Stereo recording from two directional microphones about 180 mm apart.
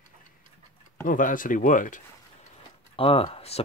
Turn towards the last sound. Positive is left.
turn(degrees=35)  # may be behind; listen again after turning